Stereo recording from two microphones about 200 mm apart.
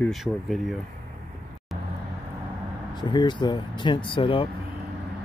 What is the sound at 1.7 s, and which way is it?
Vehicle, centre (ahead or behind).